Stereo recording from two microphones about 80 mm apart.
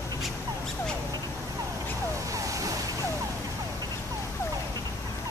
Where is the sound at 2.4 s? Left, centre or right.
Right.